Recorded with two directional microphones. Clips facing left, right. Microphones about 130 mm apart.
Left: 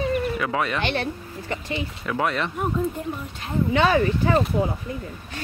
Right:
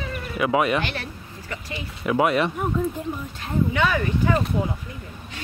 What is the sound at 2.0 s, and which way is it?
Speech, 15° right (ahead or behind).